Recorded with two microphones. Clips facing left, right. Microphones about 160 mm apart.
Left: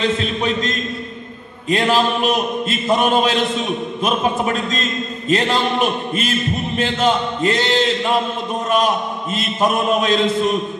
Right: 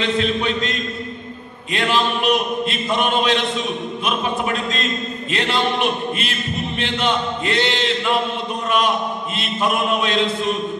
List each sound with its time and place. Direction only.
0.4 s a man's voice: 40° left (ahead or behind)
5.3 s a man's voice: 40° left (ahead or behind)